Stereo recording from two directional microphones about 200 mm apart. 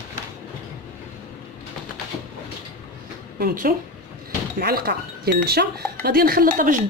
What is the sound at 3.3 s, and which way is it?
Speech, 45° right (ahead or behind).